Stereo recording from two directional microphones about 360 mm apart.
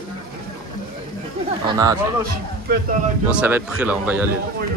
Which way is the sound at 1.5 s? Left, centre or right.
Centre.